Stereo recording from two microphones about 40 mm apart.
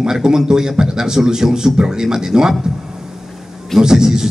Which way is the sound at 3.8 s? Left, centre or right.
Centre.